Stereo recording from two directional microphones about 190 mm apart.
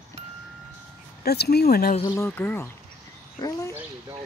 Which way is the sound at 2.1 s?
10° left (ahead or behind).